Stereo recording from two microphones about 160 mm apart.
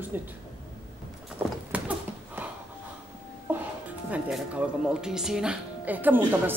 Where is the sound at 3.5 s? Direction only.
10° right (ahead or behind).